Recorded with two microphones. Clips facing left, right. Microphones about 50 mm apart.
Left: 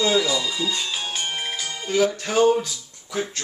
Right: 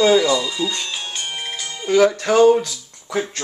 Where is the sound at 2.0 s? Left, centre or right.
Right.